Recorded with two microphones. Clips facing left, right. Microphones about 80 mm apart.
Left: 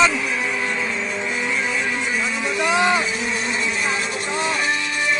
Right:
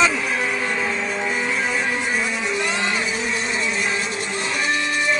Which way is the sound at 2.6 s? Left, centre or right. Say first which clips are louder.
Left 10 dB; centre.